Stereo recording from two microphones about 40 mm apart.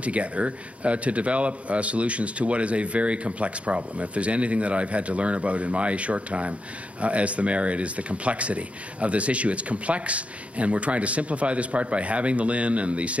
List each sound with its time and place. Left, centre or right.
0.0 s a man's voice: right